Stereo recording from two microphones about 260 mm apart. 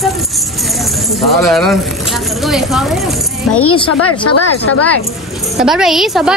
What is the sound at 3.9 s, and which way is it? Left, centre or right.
Speech, left.